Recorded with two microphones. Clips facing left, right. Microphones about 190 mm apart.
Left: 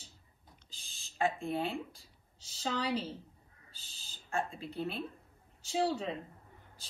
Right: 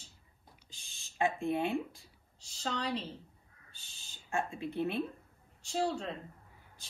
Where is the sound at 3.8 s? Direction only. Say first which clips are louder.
Left 1 dB; 55° right (ahead or behind).